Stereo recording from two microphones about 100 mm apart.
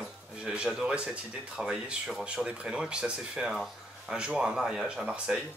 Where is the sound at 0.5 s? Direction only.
10° right (ahead or behind).